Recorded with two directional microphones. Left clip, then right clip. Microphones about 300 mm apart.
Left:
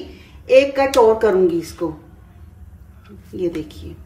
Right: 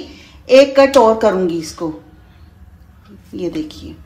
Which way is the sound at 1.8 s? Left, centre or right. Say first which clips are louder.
Right 3 dB; right.